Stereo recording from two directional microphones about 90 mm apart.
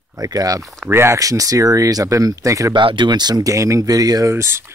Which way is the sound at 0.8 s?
25° right (ahead or behind).